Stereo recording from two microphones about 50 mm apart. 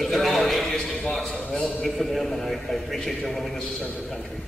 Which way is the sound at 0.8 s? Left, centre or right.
Centre.